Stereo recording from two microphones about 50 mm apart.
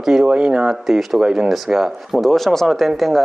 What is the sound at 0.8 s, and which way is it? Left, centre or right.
Speech, centre.